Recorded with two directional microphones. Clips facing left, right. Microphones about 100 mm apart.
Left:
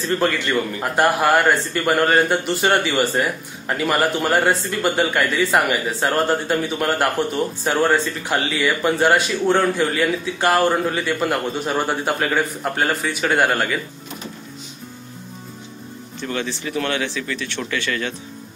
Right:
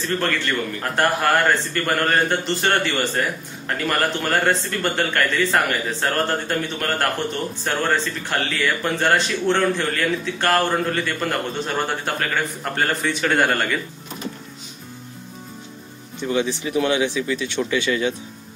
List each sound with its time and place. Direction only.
0.2 s a man's voice: 15° left (ahead or behind)
16.2 s speech: 15° right (ahead or behind)